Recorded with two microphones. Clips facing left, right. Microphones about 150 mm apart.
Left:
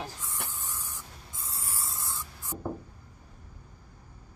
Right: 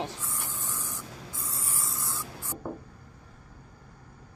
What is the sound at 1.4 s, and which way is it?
Spray, 30° left (ahead or behind).